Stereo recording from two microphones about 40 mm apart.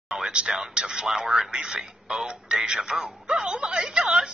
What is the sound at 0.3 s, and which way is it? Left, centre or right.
Speech, right.